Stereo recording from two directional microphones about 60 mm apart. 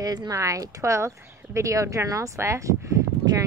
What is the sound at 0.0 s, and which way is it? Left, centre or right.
Speech, right.